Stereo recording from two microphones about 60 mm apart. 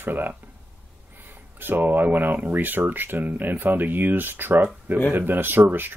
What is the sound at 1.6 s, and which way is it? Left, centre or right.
Speech, right.